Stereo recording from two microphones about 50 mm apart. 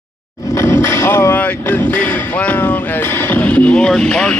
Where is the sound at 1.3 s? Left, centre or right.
Left.